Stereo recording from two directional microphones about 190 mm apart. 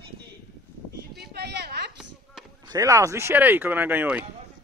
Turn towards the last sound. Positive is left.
turn(degrees=-10)  # may be behind; listen again after turning